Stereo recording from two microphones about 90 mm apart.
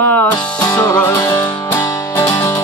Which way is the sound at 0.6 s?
45° left (ahead or behind).